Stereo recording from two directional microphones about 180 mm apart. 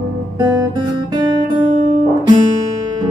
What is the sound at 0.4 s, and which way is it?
Guitar, 20° right (ahead or behind).